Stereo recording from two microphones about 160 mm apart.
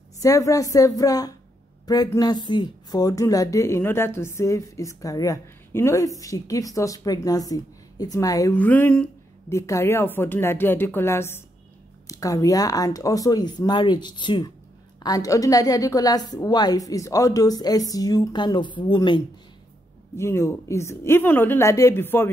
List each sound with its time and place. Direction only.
0.2 s a woman's voice: 20° left (ahead or behind)
8.5 s a sound: 10° left (ahead or behind)
9.6 s a woman's voice: 20° left (ahead or behind)
20.2 s speech: 15° left (ahead or behind)